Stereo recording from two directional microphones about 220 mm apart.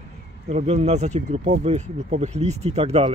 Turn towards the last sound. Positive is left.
turn(degrees=-30)  # may be behind; listen again after turning